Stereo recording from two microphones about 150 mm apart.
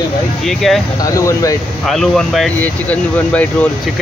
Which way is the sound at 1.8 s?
Centre (ahead or behind).